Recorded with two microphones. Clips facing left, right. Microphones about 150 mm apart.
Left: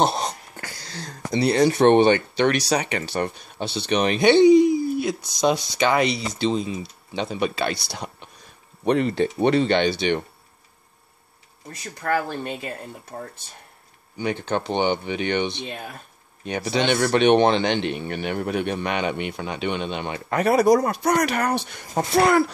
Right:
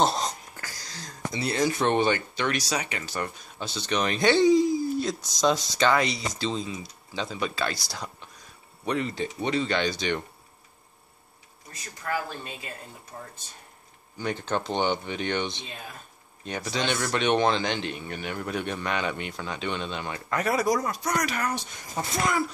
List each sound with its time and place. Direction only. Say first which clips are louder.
0.1 s a sound: left 3 dB; 65° left (ahead or behind)
3.6 s speech: left 6 dB; 65° left (ahead or behind)
3.9 s speech: left 6 dB; 20° left (ahead or behind)
4.4 s a sound: left 7 dB; 65° left (ahead or behind)
5.2 s speech: left 3 dB; 60° left (ahead or behind)
5.8 s speech: left 3 dB; 15° left (ahead or behind)
7.7 s speech: left 4 dB; 65° left (ahead or behind)
12.0 s speech: left 7 dB; 60° left (ahead or behind)
14.1 s speech: left 5 dB; 65° left (ahead or behind)
14.7 s speech: left 5 dB; 15° left (ahead or behind)
15.4 s speech: left 6 dB; 60° left (ahead or behind)
18.7 s speech: left 4 dB; 20° left (ahead or behind)
20.4 s speech: left 9 dB; 65° left (ahead or behind)